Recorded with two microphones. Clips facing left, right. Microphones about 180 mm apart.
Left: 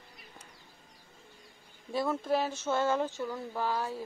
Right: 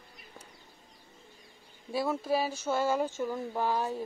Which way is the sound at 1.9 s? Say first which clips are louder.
Even; 5° right (ahead or behind).